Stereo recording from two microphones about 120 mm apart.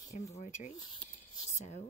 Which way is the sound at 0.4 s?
85° left.